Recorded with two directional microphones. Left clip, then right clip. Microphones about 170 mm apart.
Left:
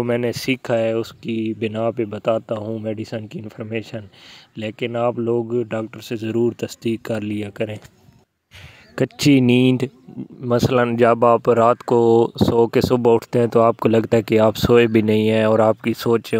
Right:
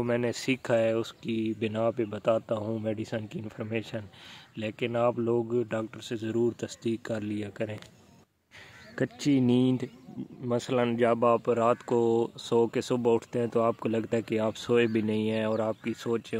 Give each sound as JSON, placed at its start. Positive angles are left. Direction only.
{"t": 0.0, "sound": "speech", "side_deg": 35}
{"t": 8.9, "sound": "speech", "side_deg": 50}